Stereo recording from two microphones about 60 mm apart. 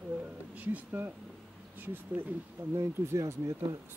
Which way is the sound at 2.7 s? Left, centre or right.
Right.